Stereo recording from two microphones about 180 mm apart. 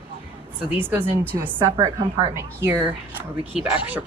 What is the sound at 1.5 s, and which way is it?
Speech, 20° right (ahead or behind).